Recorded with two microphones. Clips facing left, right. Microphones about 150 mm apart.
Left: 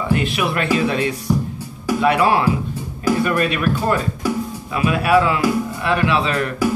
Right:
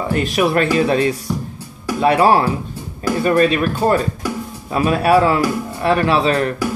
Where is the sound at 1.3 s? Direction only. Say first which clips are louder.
Left 4 dB; 5° left (ahead or behind).